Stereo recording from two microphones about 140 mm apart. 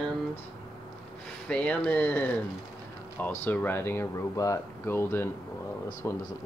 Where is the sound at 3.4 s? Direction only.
15° left (ahead or behind).